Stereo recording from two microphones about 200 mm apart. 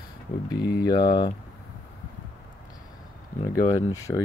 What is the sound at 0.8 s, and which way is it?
Speech, 20° left (ahead or behind).